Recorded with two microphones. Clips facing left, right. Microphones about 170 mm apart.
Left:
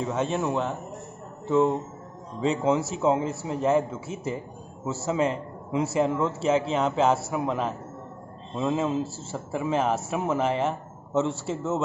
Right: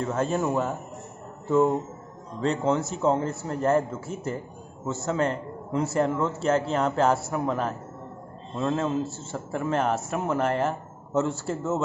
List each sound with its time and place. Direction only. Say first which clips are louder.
0.0 s a man's voice: right 1 dB; centre (ahead or behind)
9.3 s a man's voice: left 1 dB; centre (ahead or behind)